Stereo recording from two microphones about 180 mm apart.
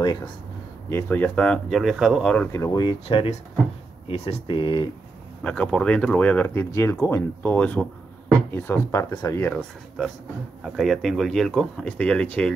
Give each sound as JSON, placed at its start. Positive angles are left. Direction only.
{"t": 0.0, "sound": "speech", "side_deg": 25}
{"t": 0.8, "sound": "speech", "side_deg": 10}
{"t": 5.4, "sound": "speech", "side_deg": 5}
{"t": 9.6, "sound": "speech", "side_deg": 0}